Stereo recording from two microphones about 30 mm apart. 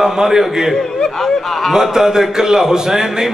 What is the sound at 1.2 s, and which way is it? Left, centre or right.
Speech, centre.